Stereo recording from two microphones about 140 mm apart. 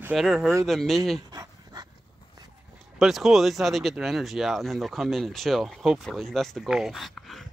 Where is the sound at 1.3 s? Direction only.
30° right (ahead or behind).